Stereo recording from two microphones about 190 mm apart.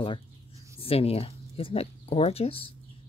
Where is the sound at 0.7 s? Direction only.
30° left (ahead or behind).